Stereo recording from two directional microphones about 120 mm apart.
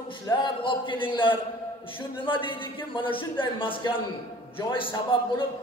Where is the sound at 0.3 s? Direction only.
45° left (ahead or behind).